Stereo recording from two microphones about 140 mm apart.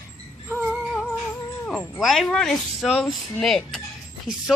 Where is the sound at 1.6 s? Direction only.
5° left (ahead or behind).